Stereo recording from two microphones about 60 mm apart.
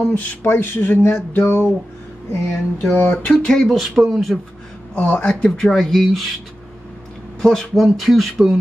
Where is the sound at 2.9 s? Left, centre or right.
Left.